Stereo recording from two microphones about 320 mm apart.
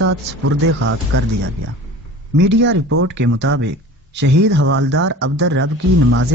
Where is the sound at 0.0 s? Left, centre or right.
Right.